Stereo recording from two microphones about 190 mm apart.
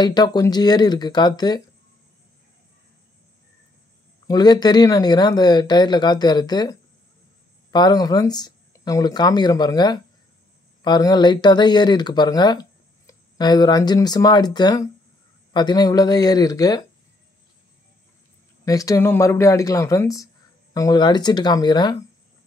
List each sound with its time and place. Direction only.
0.0 s speech: 20° left (ahead or behind)
4.3 s speech: 20° left (ahead or behind)
18.7 s speech: 20° left (ahead or behind)